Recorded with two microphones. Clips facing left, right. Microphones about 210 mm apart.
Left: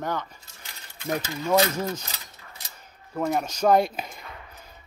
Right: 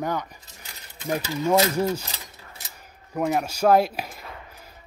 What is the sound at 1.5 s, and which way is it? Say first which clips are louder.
Speech: right 2 dB; 15° right (ahead or behind).